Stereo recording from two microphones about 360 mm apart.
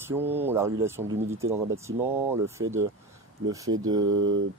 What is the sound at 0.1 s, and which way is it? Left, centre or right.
Speech, centre.